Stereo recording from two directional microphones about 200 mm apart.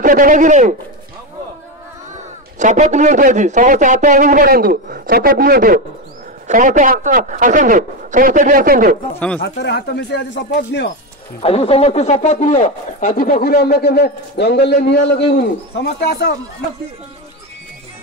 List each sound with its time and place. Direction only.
0.0 s a man's voice: 40° right (ahead or behind)
2.6 s a man's voice: 35° right (ahead or behind)
9.4 s speech: 55° left (ahead or behind)
11.4 s speech: 30° left (ahead or behind); by 16.3 s 50° left (ahead or behind)